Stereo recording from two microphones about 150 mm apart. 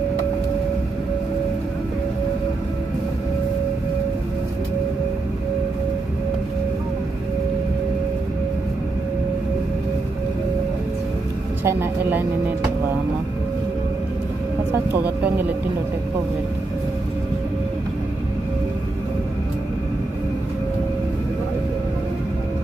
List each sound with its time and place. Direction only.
11.6 s speech: 15° right (ahead or behind)
14.7 s speech: 10° right (ahead or behind)